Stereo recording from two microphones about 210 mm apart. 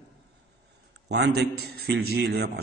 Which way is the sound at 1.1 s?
50° right (ahead or behind).